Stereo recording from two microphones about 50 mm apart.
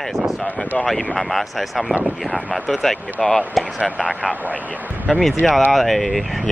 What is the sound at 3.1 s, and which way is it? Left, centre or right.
Speech, left.